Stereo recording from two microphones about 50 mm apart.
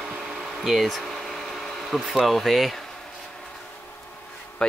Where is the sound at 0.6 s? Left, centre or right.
Centre.